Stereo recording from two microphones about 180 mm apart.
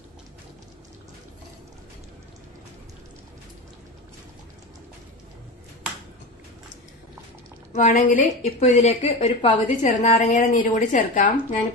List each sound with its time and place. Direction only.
7.7 s a woman's voice: 45° left (ahead or behind)